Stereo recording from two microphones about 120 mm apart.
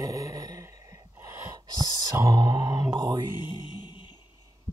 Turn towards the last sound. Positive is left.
turn(degrees=40)  # may be behind; listen again after turning